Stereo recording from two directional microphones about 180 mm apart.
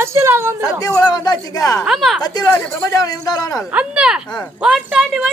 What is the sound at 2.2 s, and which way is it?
Speech, 20° left (ahead or behind).